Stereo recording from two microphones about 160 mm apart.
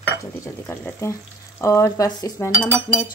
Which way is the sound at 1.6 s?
20° left (ahead or behind).